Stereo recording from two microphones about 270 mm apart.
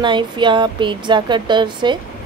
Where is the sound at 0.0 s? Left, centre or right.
Centre.